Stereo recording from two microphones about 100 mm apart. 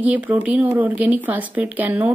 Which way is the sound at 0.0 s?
15° right (ahead or behind).